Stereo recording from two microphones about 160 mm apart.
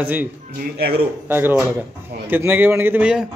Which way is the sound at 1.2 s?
15° right (ahead or behind).